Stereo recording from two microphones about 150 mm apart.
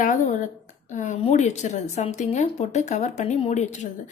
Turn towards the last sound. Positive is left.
turn(degrees=50)  # may be behind; listen again after turning